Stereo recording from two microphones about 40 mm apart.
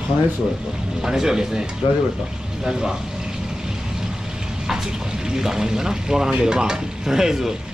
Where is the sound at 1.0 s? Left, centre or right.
Centre.